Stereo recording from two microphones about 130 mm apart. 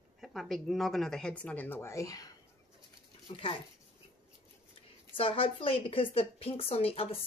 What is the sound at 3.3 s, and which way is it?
Speech, 45° left (ahead or behind).